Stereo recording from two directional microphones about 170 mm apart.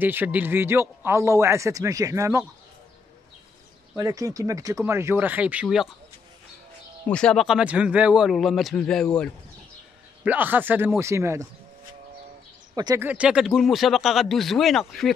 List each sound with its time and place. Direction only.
0.0 s a man's voice: 10° right (ahead or behind)
3.9 s a man's voice: 20° right (ahead or behind)
7.1 s speech: 5° left (ahead or behind)
10.2 s a man's voice: 10° right (ahead or behind)
12.7 s speech: 25° right (ahead or behind)
13.0 s speech: 10° right (ahead or behind)